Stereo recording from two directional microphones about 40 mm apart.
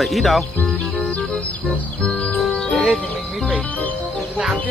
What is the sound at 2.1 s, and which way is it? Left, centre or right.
Music, left.